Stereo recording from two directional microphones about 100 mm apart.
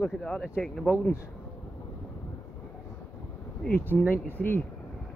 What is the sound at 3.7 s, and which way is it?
Speech, 20° left (ahead or behind).